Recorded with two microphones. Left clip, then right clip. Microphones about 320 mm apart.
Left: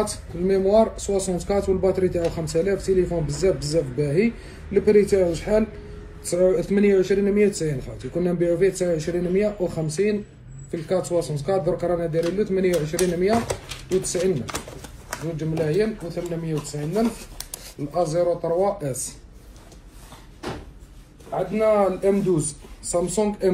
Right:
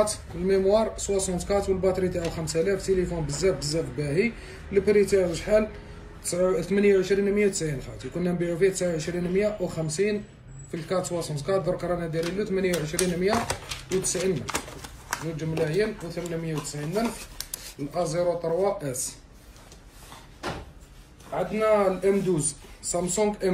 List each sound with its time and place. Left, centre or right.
0.0 s a man's voice: centre
3.5 s speech: left
4.0 s a man's voice: centre
21.5 s a man's voice: centre